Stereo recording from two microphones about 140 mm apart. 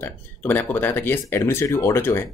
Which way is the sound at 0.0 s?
15° left (ahead or behind).